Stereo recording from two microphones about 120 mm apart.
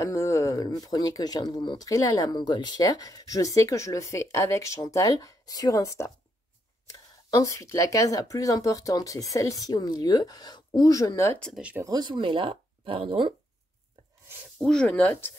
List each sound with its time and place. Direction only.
0.0 s speech: 25° left (ahead or behind)
11.3 s speech: 5° left (ahead or behind)
11.8 s speech: 35° right (ahead or behind)
14.6 s speech: 5° left (ahead or behind)